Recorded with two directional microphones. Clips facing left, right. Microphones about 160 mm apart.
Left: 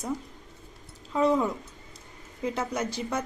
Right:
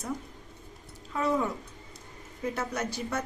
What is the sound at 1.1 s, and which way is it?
Speech, 20° left (ahead or behind).